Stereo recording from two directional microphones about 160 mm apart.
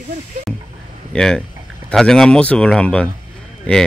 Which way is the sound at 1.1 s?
5° left (ahead or behind).